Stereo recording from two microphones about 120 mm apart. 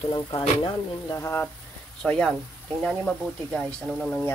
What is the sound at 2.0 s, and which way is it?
Speech, 5° left (ahead or behind).